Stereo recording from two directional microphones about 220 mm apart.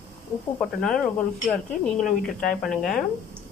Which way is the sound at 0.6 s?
5° left (ahead or behind).